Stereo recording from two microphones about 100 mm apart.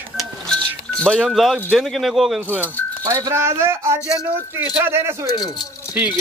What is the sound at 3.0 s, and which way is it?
Speech, 40° right (ahead or behind).